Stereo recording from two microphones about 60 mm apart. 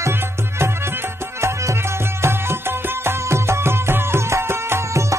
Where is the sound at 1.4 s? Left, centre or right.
Right.